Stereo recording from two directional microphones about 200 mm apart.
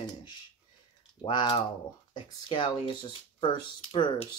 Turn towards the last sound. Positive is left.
turn(degrees=25)  # may be behind; listen again after turning